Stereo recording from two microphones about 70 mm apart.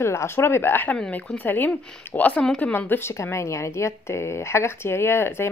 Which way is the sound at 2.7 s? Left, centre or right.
Left.